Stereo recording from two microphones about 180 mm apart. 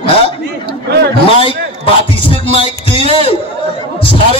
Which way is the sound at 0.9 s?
65° right (ahead or behind).